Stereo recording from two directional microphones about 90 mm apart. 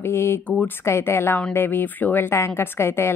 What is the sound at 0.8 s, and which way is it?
A woman's voice, 30° left (ahead or behind).